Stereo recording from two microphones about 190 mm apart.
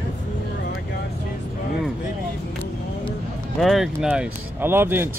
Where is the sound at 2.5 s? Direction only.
10° left (ahead or behind).